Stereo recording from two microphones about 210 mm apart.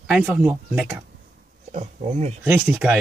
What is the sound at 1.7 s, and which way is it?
Speech, 30° right (ahead or behind).